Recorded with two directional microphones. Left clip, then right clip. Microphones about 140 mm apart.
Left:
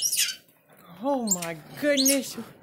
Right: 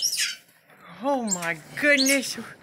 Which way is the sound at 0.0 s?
45° left (ahead or behind).